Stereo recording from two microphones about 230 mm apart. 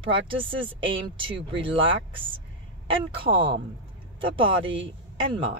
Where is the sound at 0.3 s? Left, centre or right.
Right.